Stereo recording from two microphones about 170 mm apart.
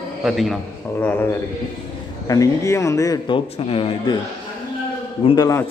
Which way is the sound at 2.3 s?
20° left (ahead or behind).